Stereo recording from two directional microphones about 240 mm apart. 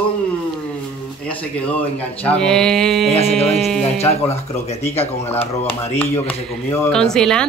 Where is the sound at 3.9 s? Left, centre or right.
Left.